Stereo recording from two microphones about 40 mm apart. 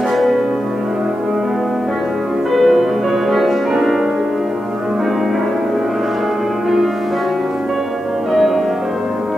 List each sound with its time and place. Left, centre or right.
2.5 s music: centre
8.3 s music: centre